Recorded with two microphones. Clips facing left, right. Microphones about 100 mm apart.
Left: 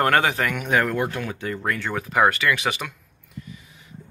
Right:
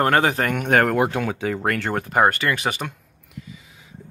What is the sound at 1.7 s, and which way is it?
Speech, 65° right (ahead or behind).